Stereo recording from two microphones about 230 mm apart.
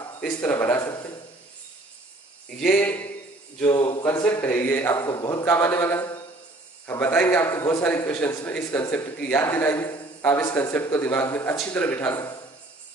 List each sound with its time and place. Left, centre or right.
0.2 s a man's voice: centre
2.6 s a man's voice: centre
3.6 s speech: centre
4.0 s a man's voice: centre